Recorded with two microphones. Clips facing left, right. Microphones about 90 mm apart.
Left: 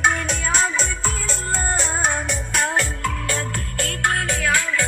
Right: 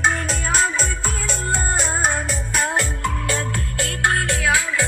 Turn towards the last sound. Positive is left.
turn(degrees=-5)  # may be behind; listen again after turning